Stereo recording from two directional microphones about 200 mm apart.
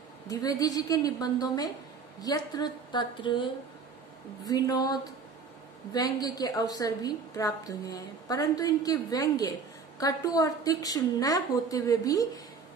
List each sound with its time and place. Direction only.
0.3 s a woman's voice: 20° left (ahead or behind)
4.5 s a woman's voice: 20° left (ahead or behind)
5.9 s a woman's voice: 20° left (ahead or behind)